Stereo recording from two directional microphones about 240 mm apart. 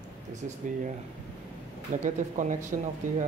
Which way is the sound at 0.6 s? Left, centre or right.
Right.